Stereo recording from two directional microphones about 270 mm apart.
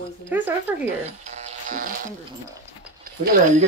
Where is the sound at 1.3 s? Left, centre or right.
Right.